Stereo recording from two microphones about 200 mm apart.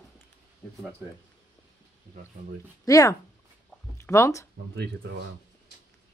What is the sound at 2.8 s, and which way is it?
Speech, 15° left (ahead or behind).